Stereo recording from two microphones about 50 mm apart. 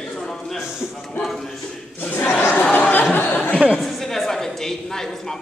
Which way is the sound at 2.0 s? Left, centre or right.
Left.